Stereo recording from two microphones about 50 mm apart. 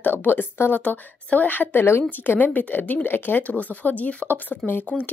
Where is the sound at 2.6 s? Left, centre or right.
Left.